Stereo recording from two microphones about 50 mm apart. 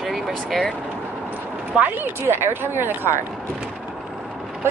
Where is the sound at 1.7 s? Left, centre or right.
Right.